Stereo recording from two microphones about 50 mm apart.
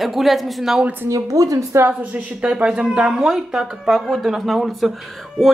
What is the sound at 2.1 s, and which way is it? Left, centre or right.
A woman's voice, right.